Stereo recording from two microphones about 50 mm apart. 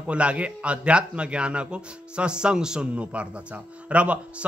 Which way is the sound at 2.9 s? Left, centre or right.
Right.